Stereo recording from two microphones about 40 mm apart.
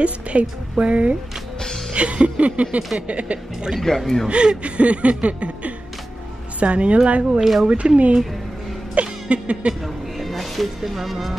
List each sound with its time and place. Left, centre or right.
0.0 s chuckle: right
3.8 s speech: centre
4.3 s chuckle: right
7.3 s speech: centre
7.6 s speech: right
8.9 s music: right
10.1 s speech: centre